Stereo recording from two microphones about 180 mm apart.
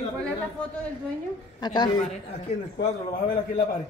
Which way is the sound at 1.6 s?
25° left (ahead or behind).